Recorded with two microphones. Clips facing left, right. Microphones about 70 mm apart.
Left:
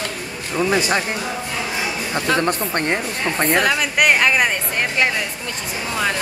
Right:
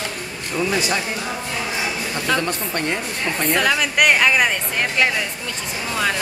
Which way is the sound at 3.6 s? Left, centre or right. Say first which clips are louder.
Right 2 dB; centre.